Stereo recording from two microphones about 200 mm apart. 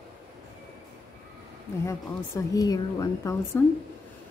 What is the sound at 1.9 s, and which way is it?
A woman's voice, 15° left (ahead or behind).